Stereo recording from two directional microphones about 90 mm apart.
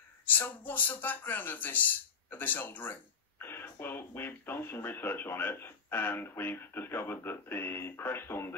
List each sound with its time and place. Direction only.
0.3 s speech: 20° left (ahead or behind)